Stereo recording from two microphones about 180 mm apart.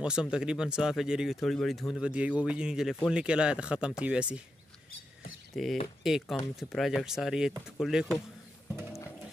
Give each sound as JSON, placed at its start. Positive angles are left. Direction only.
{"t": 0.0, "sound": "speech", "side_deg": -5}
{"t": 5.5, "sound": "speech", "side_deg": 0}